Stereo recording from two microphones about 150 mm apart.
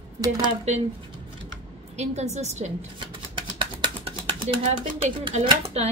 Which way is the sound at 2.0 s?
50° right (ahead or behind).